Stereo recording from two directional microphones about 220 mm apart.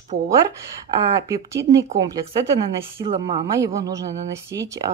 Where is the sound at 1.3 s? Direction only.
15° right (ahead or behind).